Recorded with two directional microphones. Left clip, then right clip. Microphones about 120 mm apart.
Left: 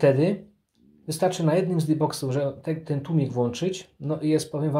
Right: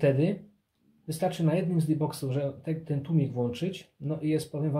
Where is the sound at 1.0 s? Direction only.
30° left (ahead or behind).